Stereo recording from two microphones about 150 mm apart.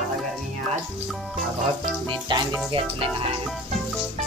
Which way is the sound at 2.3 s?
30° right (ahead or behind).